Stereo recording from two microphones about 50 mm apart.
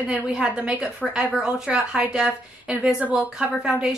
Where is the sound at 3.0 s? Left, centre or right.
Right.